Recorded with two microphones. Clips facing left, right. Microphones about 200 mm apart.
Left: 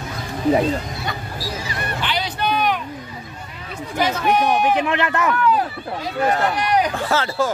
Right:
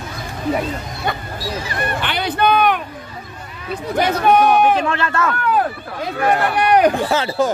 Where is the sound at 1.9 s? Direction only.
55° right (ahead or behind).